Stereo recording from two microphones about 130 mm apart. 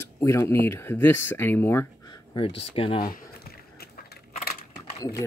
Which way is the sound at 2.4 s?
50° left (ahead or behind).